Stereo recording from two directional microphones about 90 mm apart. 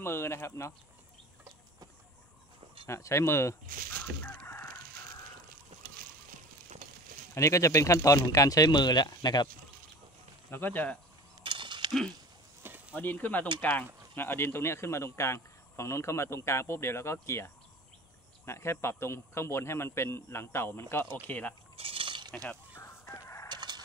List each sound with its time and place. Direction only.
0.0 s a man's voice: 30° left (ahead or behind)
2.9 s speech: 35° left (ahead or behind)
4.2 s chicken: 20° left (ahead or behind)
7.3 s speech: 35° left (ahead or behind); by 9.5 s 50° left (ahead or behind)
10.5 s a man's voice: 20° left (ahead or behind)
11.4 s a sound: 65° right (ahead or behind)
12.6 s a sound: 20° right (ahead or behind)
12.9 s a man's voice: 20° left (ahead or behind)
21.3 s speech: 15° left (ahead or behind)
21.7 s a sound: 85° right; by 22.3 s 65° right (ahead or behind)
22.3 s speech: 10° left (ahead or behind)
22.8 s chicken: 30° left (ahead or behind)
23.5 s a sound: 50° right (ahead or behind)